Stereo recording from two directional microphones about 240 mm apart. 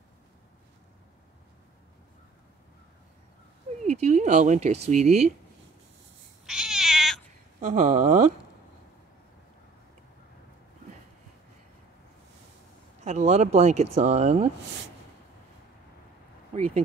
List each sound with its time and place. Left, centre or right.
3.8 s speech: right
6.4 s cat: centre
7.6 s speech: right
13.0 s speech: right
16.5 s speech: right